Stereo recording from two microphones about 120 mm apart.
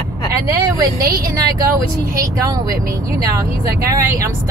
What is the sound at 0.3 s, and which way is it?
Speech, 25° right (ahead or behind).